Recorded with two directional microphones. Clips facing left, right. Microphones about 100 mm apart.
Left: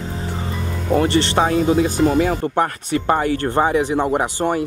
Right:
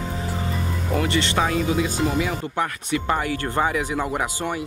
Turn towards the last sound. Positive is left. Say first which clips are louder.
# left 7 dB
turn(degrees=35)  # may be behind; listen again after turning